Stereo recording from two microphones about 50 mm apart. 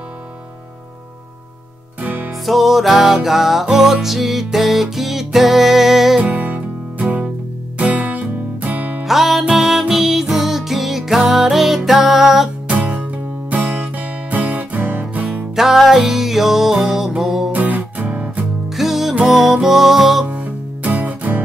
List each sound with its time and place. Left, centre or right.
2.0 s music: right
2.4 s music: centre
6.3 s music: right
9.0 s music: centre
12.8 s music: right
15.5 s music: centre
17.5 s music: right
18.7 s music: centre
20.2 s music: right